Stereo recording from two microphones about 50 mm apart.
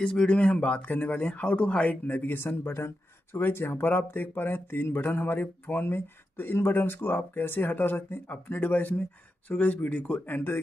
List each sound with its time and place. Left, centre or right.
0.0 s speech: centre
2.3 s speech: left
3.8 s a sound: left